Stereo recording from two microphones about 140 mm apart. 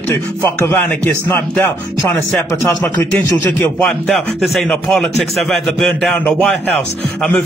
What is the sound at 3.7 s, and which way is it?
A man's voice, 5° left (ahead or behind).